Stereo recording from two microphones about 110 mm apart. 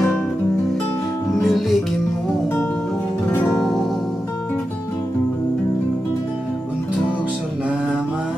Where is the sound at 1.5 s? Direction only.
Centre (ahead or behind).